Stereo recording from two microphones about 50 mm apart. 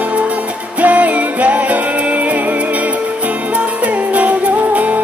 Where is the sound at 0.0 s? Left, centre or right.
Right.